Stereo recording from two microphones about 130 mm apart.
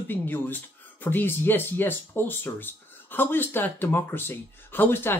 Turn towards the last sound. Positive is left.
turn(degrees=15)  # may be behind; listen again after turning